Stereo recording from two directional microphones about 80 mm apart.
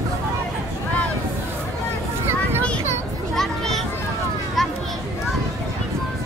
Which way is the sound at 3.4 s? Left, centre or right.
Centre.